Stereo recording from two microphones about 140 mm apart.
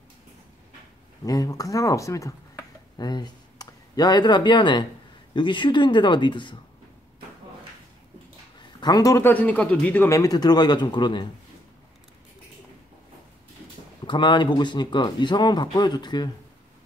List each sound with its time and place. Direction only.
1.2 s speech: 25° left (ahead or behind)
8.5 s a man's voice: 30° left (ahead or behind)
14.0 s speech: 35° left (ahead or behind)